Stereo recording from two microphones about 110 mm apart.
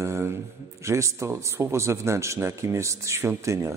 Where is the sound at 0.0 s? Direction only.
25° right (ahead or behind).